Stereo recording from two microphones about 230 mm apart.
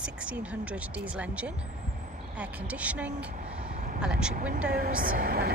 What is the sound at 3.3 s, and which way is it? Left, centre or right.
Vehicle, right.